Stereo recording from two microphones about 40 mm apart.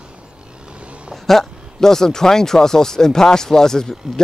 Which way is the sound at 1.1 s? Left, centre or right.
Centre.